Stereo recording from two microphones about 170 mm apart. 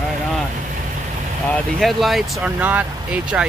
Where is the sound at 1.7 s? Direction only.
Centre (ahead or behind).